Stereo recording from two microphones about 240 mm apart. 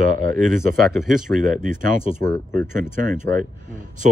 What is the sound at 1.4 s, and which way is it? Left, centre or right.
Speech, right.